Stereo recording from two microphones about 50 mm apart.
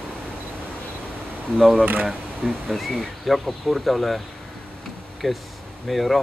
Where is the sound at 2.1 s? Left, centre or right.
Centre.